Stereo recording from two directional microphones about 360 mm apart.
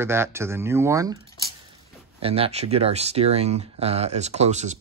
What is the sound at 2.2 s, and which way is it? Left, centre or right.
Speech, centre.